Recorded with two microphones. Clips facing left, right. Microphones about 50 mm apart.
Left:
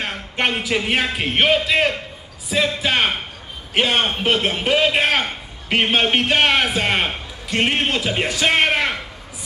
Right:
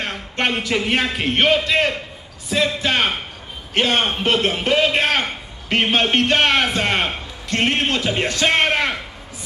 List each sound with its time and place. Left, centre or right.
0.0 s a man's voice: centre